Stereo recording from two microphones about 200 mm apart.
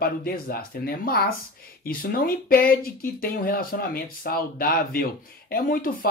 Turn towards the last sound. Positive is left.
turn(degrees=45)  # may be behind; listen again after turning